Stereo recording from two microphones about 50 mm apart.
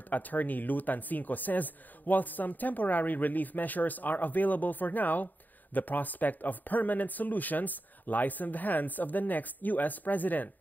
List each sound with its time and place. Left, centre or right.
0.1 s speech: left